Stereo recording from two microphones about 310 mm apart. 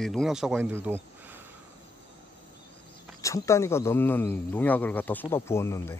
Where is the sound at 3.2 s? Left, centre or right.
Centre.